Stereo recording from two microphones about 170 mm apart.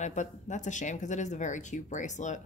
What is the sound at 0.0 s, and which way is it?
Speech, 45° left (ahead or behind).